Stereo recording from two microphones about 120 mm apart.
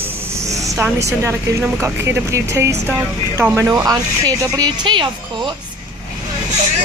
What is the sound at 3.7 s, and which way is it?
Speech, 30° right (ahead or behind).